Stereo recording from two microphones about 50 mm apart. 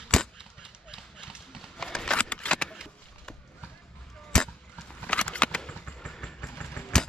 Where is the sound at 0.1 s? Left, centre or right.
Centre.